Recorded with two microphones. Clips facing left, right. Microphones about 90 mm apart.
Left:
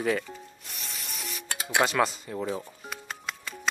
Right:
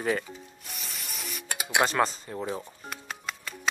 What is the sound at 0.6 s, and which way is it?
Spray, centre (ahead or behind).